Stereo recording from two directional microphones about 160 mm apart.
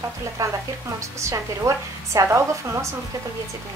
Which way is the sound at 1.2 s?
20° right (ahead or behind).